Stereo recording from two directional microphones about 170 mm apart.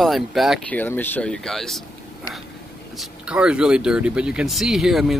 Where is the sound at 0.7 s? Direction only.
10° left (ahead or behind).